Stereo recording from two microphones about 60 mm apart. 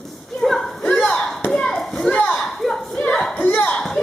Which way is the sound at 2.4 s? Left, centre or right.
Centre.